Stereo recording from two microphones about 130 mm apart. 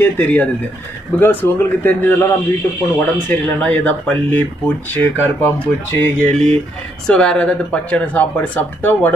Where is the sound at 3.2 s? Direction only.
10° left (ahead or behind).